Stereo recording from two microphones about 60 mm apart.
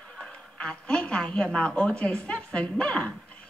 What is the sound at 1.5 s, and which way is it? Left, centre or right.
A man's voice, centre.